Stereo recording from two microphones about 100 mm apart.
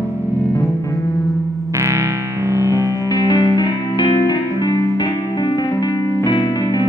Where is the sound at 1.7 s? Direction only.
30° right (ahead or behind).